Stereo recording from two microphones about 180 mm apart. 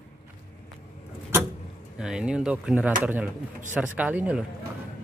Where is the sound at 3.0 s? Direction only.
10° right (ahead or behind).